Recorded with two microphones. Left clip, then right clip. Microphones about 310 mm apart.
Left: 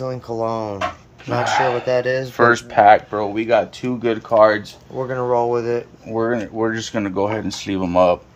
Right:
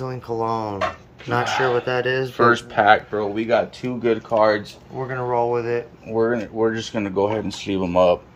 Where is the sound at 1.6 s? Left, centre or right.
Centre.